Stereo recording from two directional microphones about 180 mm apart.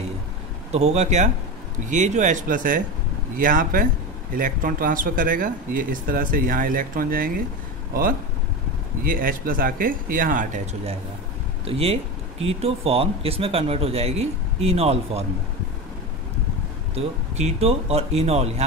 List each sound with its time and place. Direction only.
0.7 s speech: 35° right (ahead or behind); by 7.4 s 50° right (ahead or behind)
9.0 s speech: 50° right (ahead or behind); by 15.2 s 35° right (ahead or behind)
16.9 s speech: 35° right (ahead or behind)